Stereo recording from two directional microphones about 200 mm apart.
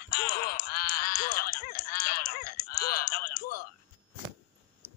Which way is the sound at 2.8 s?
50° left (ahead or behind).